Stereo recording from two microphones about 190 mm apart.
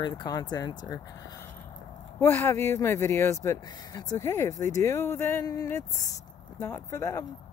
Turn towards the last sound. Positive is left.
turn(degrees=15)  # may be behind; listen again after turning